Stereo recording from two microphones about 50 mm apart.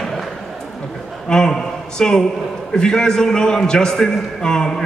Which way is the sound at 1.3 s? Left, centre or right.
Centre.